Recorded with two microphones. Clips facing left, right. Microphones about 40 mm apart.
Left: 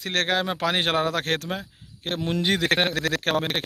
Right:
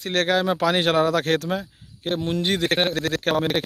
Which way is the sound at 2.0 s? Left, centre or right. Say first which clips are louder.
Right 1 dB; left.